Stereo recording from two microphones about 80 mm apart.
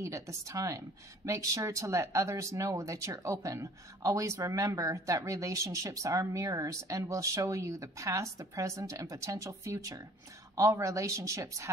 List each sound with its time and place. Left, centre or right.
0.0 s a woman's voice: right